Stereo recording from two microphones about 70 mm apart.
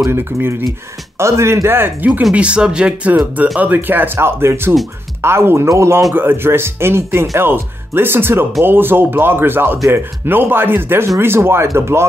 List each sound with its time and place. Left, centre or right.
0.1 s speech: right
2.3 s speech: centre; by 6.0 s right
6.1 s speech: right